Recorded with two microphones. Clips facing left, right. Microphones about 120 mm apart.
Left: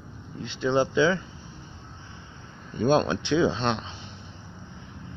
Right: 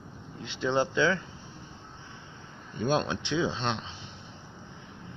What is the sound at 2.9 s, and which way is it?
Speech, 60° left (ahead or behind).